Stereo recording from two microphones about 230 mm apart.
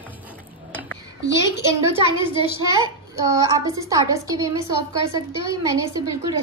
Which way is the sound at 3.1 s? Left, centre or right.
Centre.